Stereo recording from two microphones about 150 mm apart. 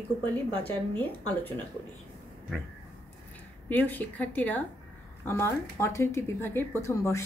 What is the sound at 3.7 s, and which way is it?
Speech, 10° left (ahead or behind).